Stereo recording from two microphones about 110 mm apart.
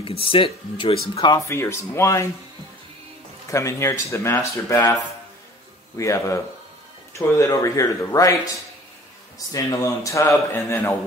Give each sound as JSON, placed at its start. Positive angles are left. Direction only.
{"t": 0.0, "sound": "speech", "side_deg": 55}
{"t": 1.1, "sound": "speech", "side_deg": 35}
{"t": 1.5, "sound": "a man's voice", "side_deg": 25}
{"t": 3.4, "sound": "a man's voice", "side_deg": 25}
{"t": 5.9, "sound": "a man's voice", "side_deg": 30}
{"t": 9.5, "sound": "a man's voice", "side_deg": 30}